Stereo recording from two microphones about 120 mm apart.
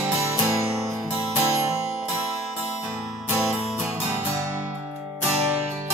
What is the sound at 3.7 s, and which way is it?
Music, 15° right (ahead or behind).